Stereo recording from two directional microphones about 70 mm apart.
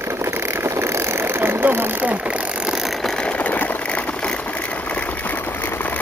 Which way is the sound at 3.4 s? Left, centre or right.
Left.